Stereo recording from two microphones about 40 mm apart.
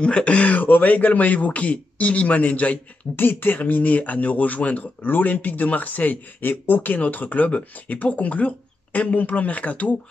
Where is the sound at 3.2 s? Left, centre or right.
Left.